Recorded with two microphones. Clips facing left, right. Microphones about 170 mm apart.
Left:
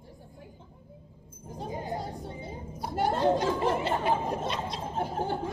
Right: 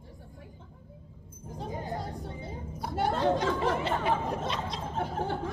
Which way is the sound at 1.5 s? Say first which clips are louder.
Left 1 dB; 5° left (ahead or behind).